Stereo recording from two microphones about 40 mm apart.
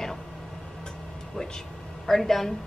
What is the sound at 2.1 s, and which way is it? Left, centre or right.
Speech, centre.